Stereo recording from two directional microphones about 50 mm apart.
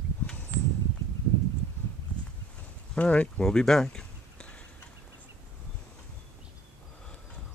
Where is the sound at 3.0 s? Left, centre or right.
Left.